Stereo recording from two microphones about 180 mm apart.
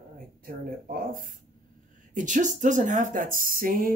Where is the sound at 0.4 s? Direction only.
50° right (ahead or behind).